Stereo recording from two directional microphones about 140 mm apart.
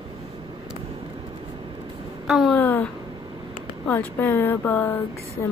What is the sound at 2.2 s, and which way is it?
Speech, 5° right (ahead or behind).